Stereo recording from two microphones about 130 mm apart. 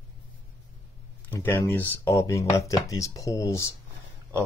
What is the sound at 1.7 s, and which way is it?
Speech, 15° left (ahead or behind).